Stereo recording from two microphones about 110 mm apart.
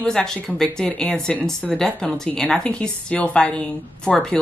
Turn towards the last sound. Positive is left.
turn(degrees=5)  # may be behind; listen again after turning